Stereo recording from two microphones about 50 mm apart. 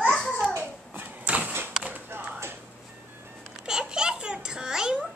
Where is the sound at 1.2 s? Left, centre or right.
Right.